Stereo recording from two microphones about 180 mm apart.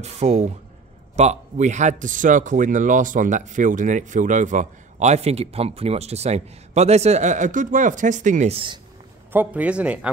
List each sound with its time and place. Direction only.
0.0 s a man's voice: 35° right (ahead or behind)
9.3 s a man's voice: 10° right (ahead or behind)